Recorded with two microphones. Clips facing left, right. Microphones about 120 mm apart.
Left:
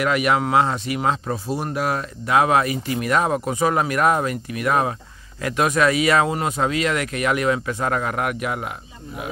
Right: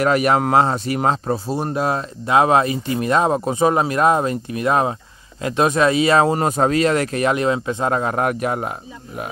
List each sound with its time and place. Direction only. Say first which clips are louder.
0.0 s speech: right 3 dB; 40° right (ahead or behind)